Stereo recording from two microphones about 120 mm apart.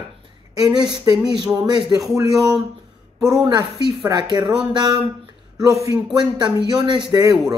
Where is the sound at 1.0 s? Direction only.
35° right (ahead or behind).